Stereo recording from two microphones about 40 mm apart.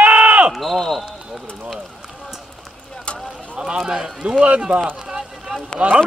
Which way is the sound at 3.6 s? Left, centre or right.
Centre.